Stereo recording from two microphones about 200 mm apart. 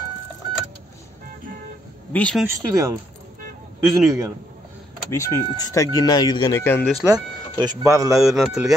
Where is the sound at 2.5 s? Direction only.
15° right (ahead or behind).